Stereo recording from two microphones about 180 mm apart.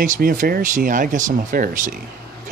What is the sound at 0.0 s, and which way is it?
Speech, 50° right (ahead or behind).